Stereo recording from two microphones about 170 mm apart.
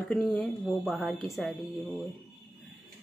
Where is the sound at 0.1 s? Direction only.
5° left (ahead or behind).